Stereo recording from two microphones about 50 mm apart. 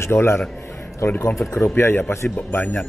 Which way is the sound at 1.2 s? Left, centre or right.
Left.